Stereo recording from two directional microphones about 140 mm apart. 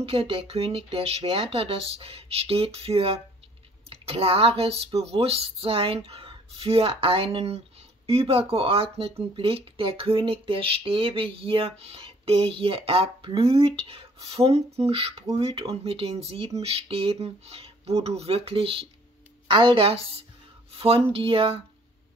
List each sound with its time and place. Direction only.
0.0 s speech: 40° right (ahead or behind)